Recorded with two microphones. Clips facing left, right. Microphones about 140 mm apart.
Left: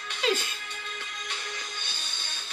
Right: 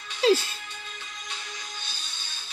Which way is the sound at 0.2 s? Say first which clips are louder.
Right 7 dB; 35° right (ahead or behind).